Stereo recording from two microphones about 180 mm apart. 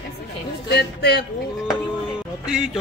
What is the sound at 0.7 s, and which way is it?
Speech, 65° left (ahead or behind).